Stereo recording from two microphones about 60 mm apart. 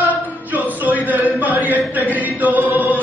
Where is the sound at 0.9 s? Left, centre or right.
Right.